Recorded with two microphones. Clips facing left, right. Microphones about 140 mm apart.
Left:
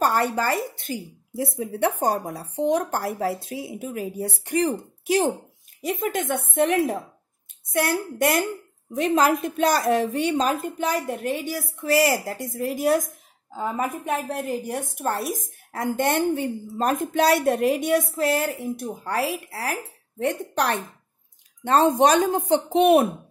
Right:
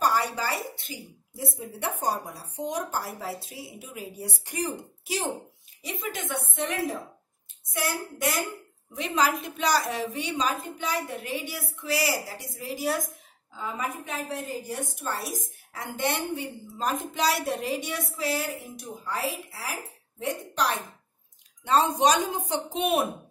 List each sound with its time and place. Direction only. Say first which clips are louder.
0.0 s a woman's voice: left 4 dB; 55° left (ahead or behind)
19.0 s a woman's voice: left 5 dB; 65° left (ahead or behind)
21.6 s a woman's voice: left 4 dB; 50° left (ahead or behind)